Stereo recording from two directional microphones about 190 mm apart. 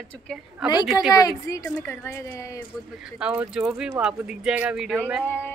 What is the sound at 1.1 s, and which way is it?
A woman's voice, 20° left (ahead or behind).